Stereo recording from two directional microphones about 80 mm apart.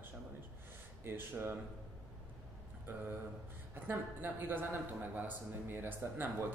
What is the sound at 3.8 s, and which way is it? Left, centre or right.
Speech, right.